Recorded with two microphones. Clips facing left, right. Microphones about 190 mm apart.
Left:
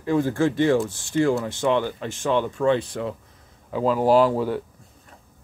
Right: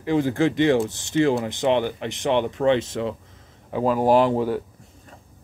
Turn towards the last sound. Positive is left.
turn(degrees=-20)  # may be behind; listen again after turning